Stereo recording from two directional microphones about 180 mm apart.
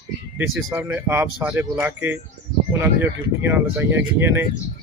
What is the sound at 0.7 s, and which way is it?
Speech, 10° right (ahead or behind).